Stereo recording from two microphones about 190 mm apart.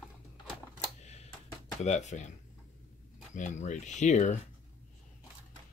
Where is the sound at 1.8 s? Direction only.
35° left (ahead or behind).